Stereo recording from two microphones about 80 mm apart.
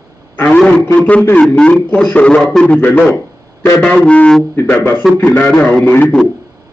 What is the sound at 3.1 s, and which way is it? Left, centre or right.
Speech, left.